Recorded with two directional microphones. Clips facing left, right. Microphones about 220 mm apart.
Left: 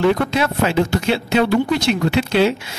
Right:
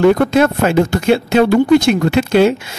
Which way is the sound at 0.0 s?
50° right (ahead or behind).